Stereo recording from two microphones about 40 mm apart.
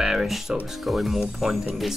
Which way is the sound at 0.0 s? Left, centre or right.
Centre.